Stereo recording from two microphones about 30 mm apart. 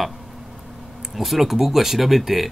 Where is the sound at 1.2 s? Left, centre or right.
Centre.